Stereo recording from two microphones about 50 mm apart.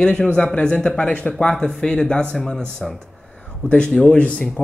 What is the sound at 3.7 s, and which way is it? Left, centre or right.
Speech, left.